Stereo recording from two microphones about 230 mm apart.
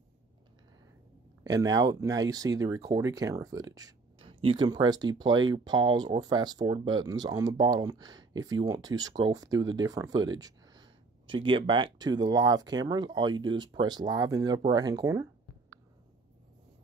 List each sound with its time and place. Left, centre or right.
1.4 s speech: centre